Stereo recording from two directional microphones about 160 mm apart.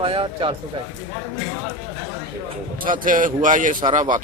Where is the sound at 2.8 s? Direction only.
60° right (ahead or behind).